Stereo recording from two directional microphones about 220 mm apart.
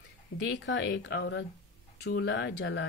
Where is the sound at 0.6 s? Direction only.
60° left (ahead or behind).